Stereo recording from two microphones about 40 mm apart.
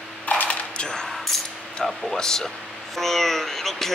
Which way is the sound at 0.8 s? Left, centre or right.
Centre.